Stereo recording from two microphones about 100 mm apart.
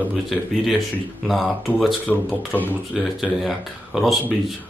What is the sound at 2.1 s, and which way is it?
Speech, 15° left (ahead or behind).